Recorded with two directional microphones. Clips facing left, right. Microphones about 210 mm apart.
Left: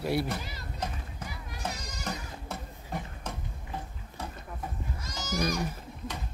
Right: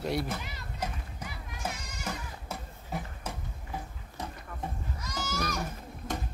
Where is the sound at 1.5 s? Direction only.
35° left (ahead or behind).